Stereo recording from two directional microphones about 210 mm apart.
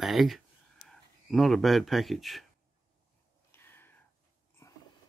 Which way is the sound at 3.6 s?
10° left (ahead or behind).